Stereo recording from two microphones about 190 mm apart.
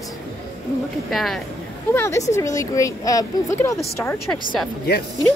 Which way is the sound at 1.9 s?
15° left (ahead or behind).